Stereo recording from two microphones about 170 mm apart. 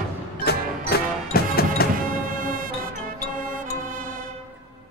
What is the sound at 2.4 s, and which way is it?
Music, 55° right (ahead or behind).